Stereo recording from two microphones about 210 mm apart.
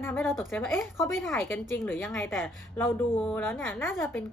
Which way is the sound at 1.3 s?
10° left (ahead or behind).